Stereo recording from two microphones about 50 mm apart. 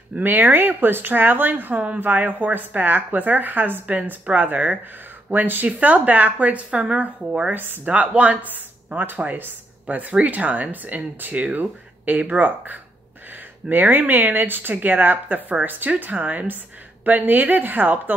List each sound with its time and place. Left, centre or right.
0.1 s a woman's voice: right
7.8 s a woman's voice: right
13.7 s a woman's voice: right